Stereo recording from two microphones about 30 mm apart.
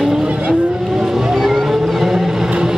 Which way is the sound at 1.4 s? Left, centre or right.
Centre.